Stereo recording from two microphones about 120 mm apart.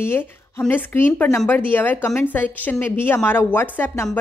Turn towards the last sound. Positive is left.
turn(degrees=20)  # may be behind; listen again after turning